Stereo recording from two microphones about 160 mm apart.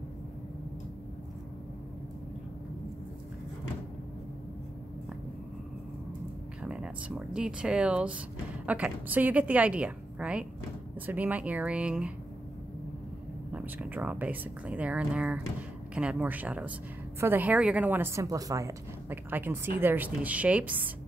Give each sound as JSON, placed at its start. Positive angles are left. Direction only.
{"t": 6.6, "sound": "a woman's voice", "side_deg": -5}
{"t": 13.5, "sound": "a woman's voice", "side_deg": -10}